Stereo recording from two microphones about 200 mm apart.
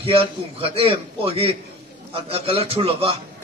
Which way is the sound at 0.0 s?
25° right (ahead or behind).